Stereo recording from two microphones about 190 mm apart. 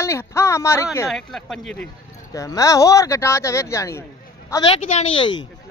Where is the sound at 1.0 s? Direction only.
Centre (ahead or behind).